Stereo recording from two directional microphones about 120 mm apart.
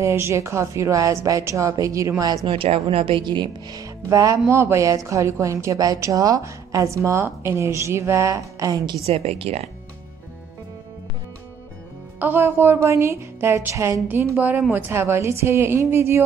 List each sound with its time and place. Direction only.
0.0 s a woman's voice: 25° right (ahead or behind)
2.4 s a woman's voice: 50° right (ahead or behind); by 8.9 s 30° right (ahead or behind)
9.0 s speech: 60° right (ahead or behind)
12.2 s a woman's voice: 15° right (ahead or behind)